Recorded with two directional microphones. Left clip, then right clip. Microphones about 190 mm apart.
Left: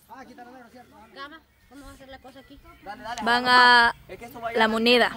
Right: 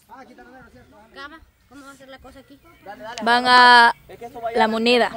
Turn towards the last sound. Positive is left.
turn(degrees=-15)  # may be behind; listen again after turning